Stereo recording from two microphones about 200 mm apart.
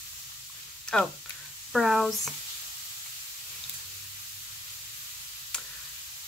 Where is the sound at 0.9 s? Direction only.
Centre (ahead or behind).